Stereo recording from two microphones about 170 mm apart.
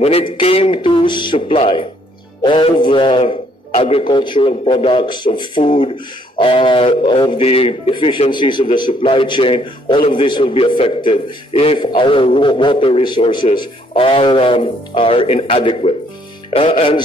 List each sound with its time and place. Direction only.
0.0 s a man's voice: 35° left (ahead or behind)